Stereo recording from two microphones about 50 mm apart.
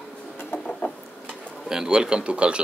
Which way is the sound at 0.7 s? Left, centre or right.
Left.